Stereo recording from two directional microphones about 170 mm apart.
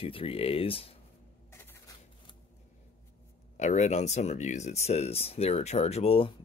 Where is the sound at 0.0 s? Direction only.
35° left (ahead or behind).